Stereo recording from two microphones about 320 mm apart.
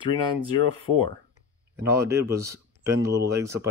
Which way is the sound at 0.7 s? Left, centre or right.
Centre.